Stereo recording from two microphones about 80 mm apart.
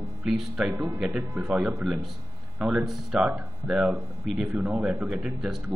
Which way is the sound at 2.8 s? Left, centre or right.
Centre.